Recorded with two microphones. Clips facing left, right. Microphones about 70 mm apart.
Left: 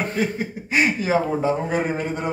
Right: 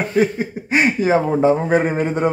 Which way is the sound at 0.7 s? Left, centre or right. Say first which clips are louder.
Right 4 dB; right.